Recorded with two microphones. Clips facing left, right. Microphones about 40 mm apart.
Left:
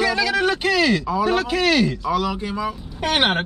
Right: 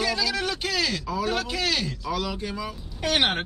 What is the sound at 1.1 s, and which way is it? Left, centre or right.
Speech, centre.